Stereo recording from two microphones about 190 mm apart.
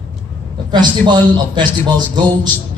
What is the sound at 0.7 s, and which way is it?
A man's voice, 25° right (ahead or behind).